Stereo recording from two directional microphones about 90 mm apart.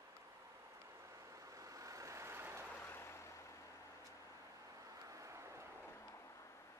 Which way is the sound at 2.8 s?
25° left (ahead or behind).